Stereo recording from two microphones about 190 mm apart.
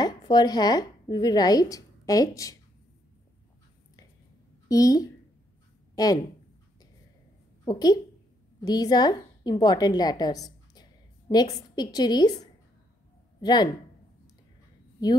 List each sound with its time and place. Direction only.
0.0 s a woman's voice: 20° left (ahead or behind)
4.6 s a woman's voice: 20° left (ahead or behind)
7.6 s a woman's voice: 20° left (ahead or behind)
13.4 s speech: 20° left (ahead or behind)